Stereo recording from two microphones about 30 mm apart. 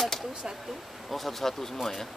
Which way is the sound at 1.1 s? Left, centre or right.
Centre.